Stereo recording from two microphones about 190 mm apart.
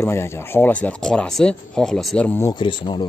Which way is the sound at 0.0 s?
15° left (ahead or behind).